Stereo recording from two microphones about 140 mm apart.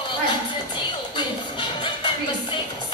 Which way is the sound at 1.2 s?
35° left (ahead or behind).